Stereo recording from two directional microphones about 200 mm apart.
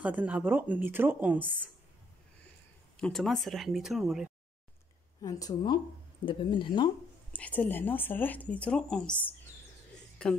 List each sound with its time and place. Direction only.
0.0 s speech: 10° right (ahead or behind)
3.0 s speech: centre (ahead or behind)
5.2 s speech: 20° left (ahead or behind)
7.3 s speech: 5° left (ahead or behind)